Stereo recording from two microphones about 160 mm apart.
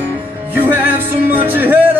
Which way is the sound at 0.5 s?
10° right (ahead or behind).